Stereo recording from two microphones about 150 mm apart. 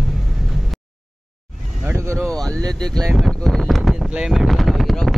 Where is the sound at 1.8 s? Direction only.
15° right (ahead or behind).